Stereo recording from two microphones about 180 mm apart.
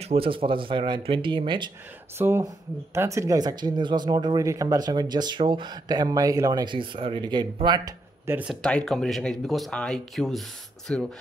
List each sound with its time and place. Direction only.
0.0 s speech: 30° right (ahead or behind)
2.1 s speech: 15° right (ahead or behind)
8.3 s speech: 10° right (ahead or behind)
8.6 s speech: 5° left (ahead or behind)